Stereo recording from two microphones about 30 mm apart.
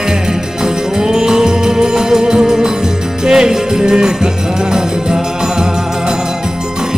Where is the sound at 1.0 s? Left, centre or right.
Centre.